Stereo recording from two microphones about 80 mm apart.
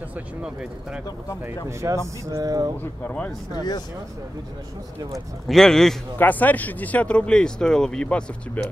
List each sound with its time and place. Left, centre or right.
0.1 s speech: centre
1.7 s speech: right
2.8 s speech: left
5.5 s a man's voice: centre
6.1 s speech: left